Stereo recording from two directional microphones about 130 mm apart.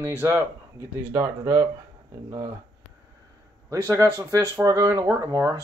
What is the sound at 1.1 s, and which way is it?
Speech, 25° right (ahead or behind).